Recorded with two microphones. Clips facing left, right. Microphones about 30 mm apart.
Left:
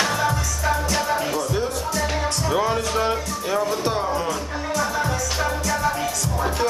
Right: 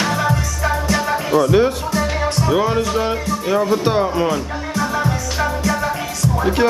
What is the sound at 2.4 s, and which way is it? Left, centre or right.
Speech, centre.